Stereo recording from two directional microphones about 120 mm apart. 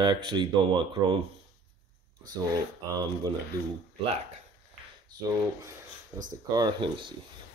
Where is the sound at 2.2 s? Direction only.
30° right (ahead or behind).